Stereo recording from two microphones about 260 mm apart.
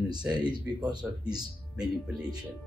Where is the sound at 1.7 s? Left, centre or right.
Centre.